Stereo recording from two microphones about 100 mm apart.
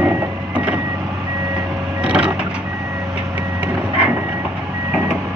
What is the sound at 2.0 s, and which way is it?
Vehicle, 10° right (ahead or behind).